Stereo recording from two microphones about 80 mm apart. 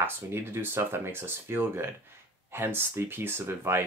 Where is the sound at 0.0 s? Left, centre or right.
Right.